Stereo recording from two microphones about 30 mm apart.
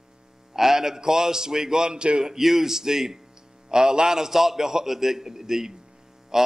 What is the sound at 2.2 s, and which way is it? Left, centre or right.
A man's voice, centre.